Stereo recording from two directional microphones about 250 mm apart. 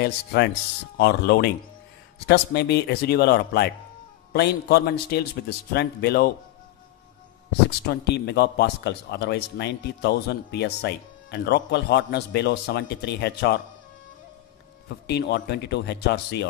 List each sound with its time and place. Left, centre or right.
0.0 s speech: left
7.8 s speech: left
15.0 s speech: left